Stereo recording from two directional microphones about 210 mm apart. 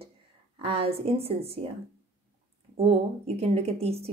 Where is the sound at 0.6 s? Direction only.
30° right (ahead or behind).